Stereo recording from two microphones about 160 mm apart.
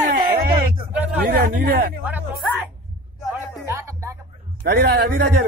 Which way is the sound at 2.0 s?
10° right (ahead or behind).